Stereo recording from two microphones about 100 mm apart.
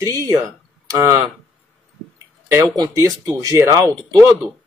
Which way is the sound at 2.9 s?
35° right (ahead or behind).